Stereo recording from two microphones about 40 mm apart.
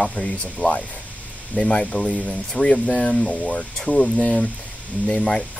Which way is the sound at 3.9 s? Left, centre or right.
Centre.